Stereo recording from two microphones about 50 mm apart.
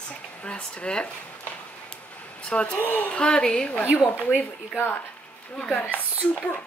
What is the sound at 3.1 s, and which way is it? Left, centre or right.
Speech, centre.